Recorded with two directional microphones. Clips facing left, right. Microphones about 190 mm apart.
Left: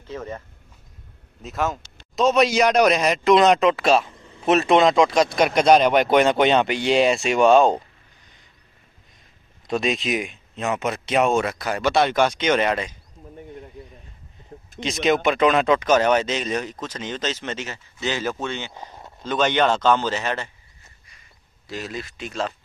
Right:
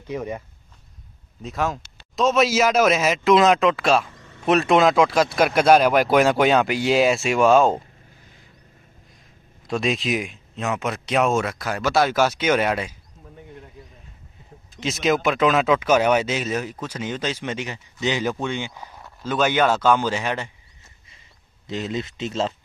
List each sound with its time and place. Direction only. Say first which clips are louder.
0.0 s speech: right 4 dB; 15° right (ahead or behind)
1.4 s speech: even; centre (ahead or behind)
4.2 s a sound: left 1 dB; 10° left (ahead or behind)
4.5 s speech: even; centre (ahead or behind)
9.7 s speech: even; centre (ahead or behind)
14.8 s speech: left 1 dB; centre (ahead or behind)
21.6 s speech: right 4 dB; 20° right (ahead or behind)